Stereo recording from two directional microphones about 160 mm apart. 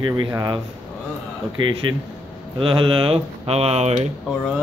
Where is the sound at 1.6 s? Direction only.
30° right (ahead or behind).